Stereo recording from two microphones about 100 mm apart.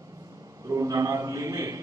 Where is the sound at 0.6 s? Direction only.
35° right (ahead or behind).